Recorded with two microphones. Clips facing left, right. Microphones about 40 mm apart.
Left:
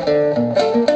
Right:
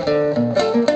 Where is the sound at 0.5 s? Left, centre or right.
Centre.